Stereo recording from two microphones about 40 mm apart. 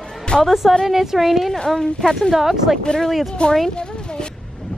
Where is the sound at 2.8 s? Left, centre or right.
Centre.